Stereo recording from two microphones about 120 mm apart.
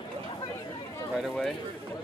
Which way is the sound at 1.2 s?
Centre (ahead or behind).